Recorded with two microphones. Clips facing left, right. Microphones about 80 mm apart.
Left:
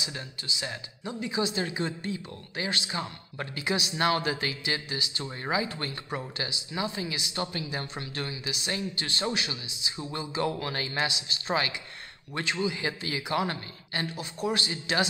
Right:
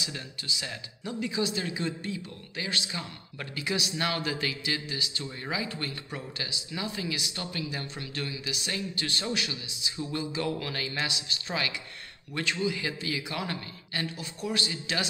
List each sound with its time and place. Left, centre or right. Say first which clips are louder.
0.0 s speech: left 1 dB; left
6.7 s speech: left 1 dB; left
11.1 s speech: left 1 dB; right
11.4 s speech: left 4 dB; left